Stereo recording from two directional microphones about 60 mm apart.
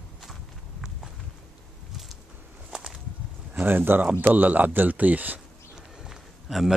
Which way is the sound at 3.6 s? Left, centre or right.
Right.